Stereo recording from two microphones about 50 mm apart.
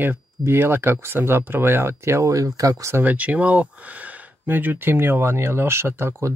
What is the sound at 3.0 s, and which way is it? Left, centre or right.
Speech, right.